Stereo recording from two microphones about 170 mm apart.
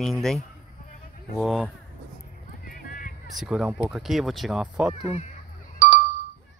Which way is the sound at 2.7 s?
55° left (ahead or behind).